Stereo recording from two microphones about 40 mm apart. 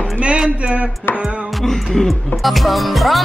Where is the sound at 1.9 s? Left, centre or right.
Centre.